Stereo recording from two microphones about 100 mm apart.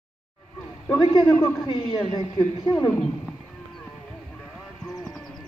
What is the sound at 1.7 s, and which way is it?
Speech, 55° left (ahead or behind).